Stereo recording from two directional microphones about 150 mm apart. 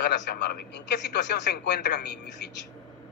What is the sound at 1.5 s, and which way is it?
A woman's voice, 90° left.